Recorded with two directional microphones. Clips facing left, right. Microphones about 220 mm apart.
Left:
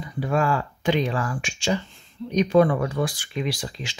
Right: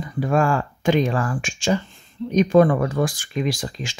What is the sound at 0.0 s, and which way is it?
Speech, 50° right (ahead or behind).